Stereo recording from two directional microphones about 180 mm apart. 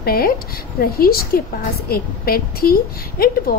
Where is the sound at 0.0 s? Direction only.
55° left (ahead or behind).